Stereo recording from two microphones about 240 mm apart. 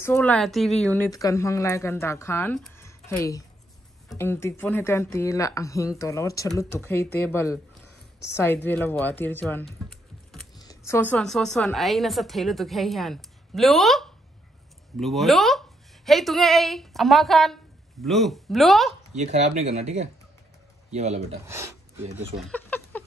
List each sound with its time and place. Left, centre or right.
0.0 s speech: centre
8.6 s speech: centre
10.5 s computer keyboard: centre
10.9 s a woman's voice: centre
19.4 s speech: right
21.5 s a sound: centre
22.5 s a sound: centre